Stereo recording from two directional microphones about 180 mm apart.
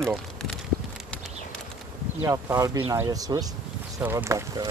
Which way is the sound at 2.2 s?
15° right (ahead or behind).